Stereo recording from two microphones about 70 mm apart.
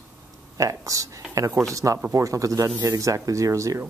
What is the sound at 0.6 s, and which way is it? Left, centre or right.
Speech, right.